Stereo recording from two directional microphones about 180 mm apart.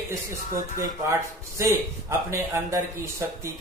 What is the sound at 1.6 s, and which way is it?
A man's voice, 20° right (ahead or behind).